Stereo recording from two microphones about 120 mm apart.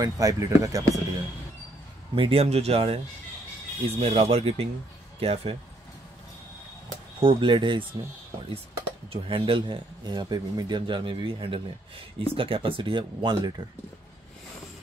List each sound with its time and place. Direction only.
0.0 s speech: 30° right (ahead or behind)
2.1 s speech: 50° right (ahead or behind)
7.2 s speech: 45° right (ahead or behind)
9.1 s a man's voice: 50° right (ahead or behind)